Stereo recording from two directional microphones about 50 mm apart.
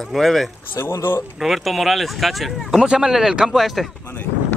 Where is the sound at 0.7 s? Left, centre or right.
Left.